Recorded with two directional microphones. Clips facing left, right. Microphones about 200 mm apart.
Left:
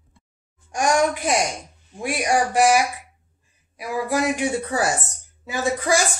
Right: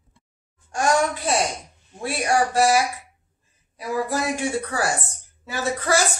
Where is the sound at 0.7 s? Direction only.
15° left (ahead or behind).